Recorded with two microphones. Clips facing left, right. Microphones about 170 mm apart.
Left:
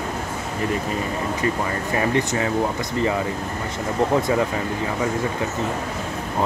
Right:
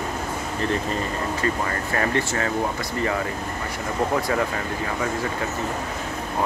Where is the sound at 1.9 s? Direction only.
15° left (ahead or behind).